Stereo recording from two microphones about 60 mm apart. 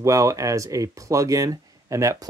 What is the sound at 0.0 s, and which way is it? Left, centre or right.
Speech, right.